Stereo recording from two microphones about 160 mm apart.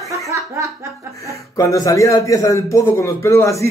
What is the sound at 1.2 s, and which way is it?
Speech, 20° left (ahead or behind).